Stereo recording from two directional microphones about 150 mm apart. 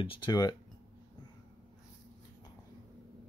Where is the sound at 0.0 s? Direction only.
35° left (ahead or behind).